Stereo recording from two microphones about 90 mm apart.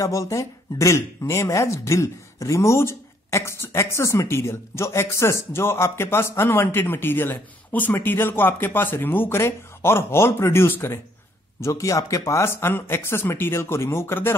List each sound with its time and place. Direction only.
0.0 s speech: 35° left (ahead or behind)